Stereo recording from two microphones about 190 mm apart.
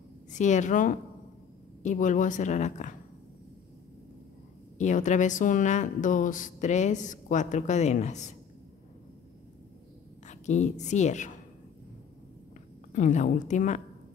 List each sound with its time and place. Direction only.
0.3 s a woman's voice: 40° left (ahead or behind)
4.7 s a woman's voice: 40° left (ahead or behind)
10.2 s a woman's voice: 40° left (ahead or behind)
12.9 s a woman's voice: 40° left (ahead or behind)